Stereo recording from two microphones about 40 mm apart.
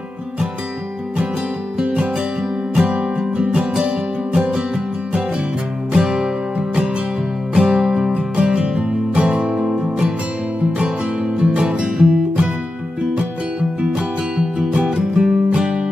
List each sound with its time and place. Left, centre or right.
3.0 s music: right
5.9 s music: centre
8.1 s music: right